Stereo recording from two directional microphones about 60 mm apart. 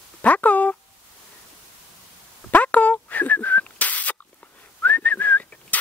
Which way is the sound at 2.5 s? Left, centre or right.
Left.